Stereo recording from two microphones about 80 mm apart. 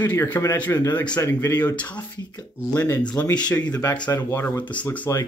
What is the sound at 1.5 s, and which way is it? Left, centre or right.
Speech, centre.